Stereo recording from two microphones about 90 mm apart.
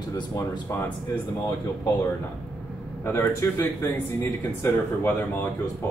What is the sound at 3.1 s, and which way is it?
Speech, 30° left (ahead or behind).